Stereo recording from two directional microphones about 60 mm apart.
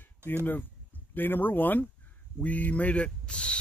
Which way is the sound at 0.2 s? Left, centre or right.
Right.